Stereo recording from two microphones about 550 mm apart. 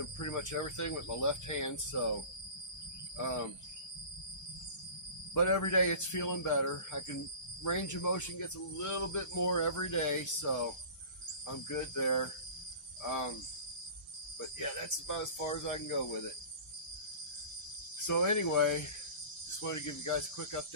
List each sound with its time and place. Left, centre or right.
0.2 s speech: left
3.2 s speech: left
5.3 s speech: left
14.6 s speech: left
18.0 s speech: left